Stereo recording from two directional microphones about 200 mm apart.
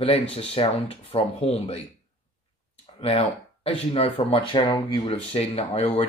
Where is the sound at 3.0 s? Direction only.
30° left (ahead or behind).